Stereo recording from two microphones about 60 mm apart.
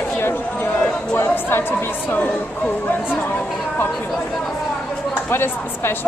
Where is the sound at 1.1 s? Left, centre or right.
Left.